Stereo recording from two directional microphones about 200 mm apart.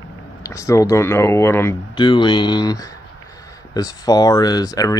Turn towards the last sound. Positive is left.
turn(degrees=20)  # may be behind; listen again after turning